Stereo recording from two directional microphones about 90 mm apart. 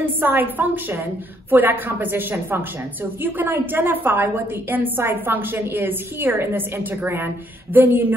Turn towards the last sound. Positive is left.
turn(degrees=-20)  # may be behind; listen again after turning